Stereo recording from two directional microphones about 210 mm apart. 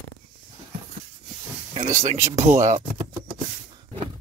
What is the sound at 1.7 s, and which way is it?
Speech, 35° right (ahead or behind).